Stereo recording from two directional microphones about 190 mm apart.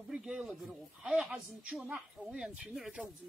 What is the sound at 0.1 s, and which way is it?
Speech, 5° right (ahead or behind).